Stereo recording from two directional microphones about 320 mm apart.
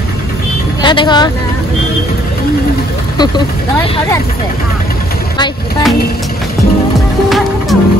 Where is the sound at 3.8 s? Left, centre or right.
Centre.